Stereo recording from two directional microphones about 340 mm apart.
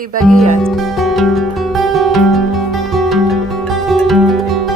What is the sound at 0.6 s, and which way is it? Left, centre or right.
Music, centre.